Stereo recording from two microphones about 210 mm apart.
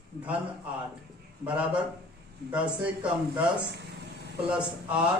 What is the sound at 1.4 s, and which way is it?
Speech, 5° right (ahead or behind).